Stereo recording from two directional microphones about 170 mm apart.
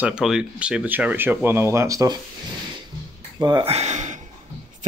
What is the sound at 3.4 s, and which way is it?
Speech, 25° right (ahead or behind).